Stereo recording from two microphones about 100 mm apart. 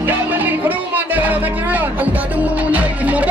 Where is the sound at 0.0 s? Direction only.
20° right (ahead or behind).